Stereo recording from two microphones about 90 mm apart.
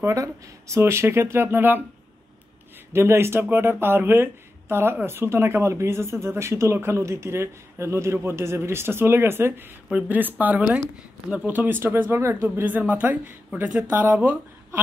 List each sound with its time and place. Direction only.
0.0 s speech: 35° right (ahead or behind)
2.9 s speech: 30° right (ahead or behind)
12.5 s speech: 20° right (ahead or behind)